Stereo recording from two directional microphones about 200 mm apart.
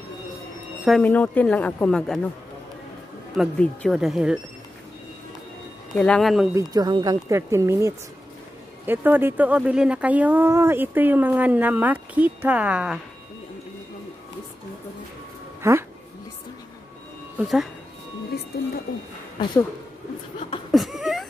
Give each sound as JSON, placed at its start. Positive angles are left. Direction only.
{"t": 0.8, "sound": "speech", "side_deg": 5}
{"t": 3.3, "sound": "speech", "side_deg": 0}
{"t": 5.9, "sound": "speech", "side_deg": 5}
{"t": 6.5, "sound": "speech", "side_deg": -20}
{"t": 15.6, "sound": "speech", "side_deg": -15}
{"t": 17.4, "sound": "speech", "side_deg": 0}
{"t": 20.3, "sound": "a sound", "side_deg": 30}
{"t": 20.7, "sound": "a sound", "side_deg": 0}